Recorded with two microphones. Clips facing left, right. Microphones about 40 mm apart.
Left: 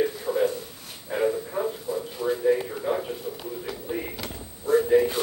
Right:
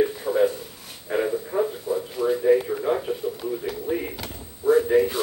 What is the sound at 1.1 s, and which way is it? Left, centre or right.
Bow-wow, centre.